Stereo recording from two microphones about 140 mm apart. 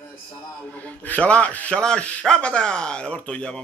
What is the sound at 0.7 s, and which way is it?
Speech, 10° left (ahead or behind).